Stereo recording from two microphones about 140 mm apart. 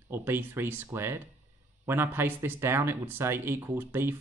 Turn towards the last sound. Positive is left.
turn(degrees=-15)  # may be behind; listen again after turning